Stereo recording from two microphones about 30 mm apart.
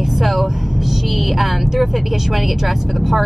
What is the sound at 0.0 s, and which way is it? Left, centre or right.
A woman's voice, centre.